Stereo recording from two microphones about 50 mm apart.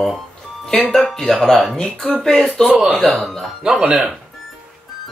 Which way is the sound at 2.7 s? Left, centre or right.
Right.